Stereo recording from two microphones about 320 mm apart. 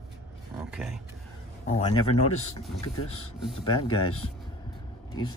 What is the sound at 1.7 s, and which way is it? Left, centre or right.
Speech, centre.